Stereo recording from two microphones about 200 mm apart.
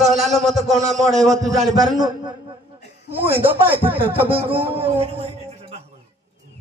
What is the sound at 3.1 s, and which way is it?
A man's voice, 10° right (ahead or behind).